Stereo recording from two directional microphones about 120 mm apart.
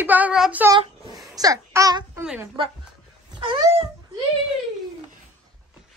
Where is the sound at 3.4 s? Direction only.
45° right (ahead or behind).